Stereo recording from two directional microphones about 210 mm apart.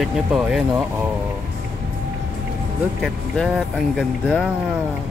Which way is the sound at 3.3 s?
Centre (ahead or behind).